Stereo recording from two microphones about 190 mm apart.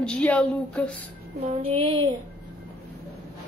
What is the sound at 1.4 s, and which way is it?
Child singing, 30° right (ahead or behind).